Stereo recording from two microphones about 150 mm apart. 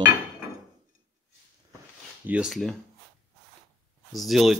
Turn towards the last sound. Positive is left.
turn(degrees=0)  # may be behind; listen again after turning